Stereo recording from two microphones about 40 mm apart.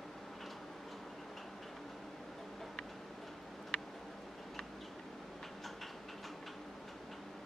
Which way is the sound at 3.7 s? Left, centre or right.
Left.